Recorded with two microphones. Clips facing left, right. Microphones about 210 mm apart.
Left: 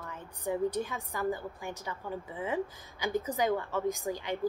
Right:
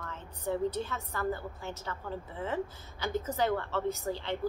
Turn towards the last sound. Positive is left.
turn(degrees=15)  # may be behind; listen again after turning